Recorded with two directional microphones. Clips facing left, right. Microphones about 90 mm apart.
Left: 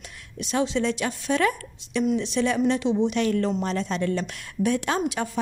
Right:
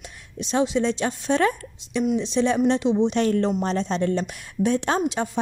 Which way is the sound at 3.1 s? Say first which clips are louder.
Right 2 dB; 35° right (ahead or behind).